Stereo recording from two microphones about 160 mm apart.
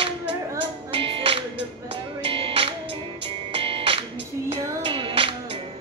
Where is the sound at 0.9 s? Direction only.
35° right (ahead or behind).